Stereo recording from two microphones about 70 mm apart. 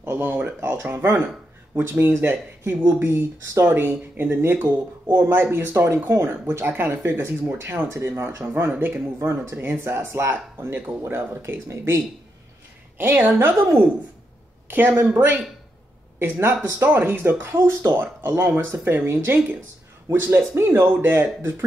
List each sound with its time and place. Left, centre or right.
0.0 s speech: right
12.9 s a woman's voice: right